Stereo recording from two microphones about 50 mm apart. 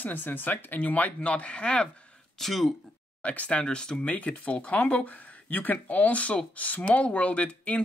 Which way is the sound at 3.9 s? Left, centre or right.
Left.